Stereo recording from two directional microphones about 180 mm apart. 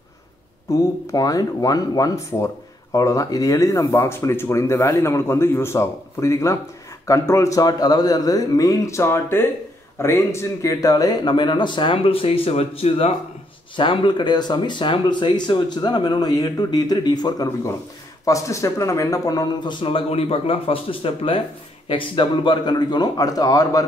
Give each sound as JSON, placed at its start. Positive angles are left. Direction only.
{"t": 0.7, "sound": "speech", "side_deg": 20}